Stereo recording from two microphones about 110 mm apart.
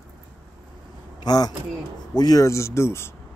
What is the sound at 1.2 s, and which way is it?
Speech, 35° left (ahead or behind).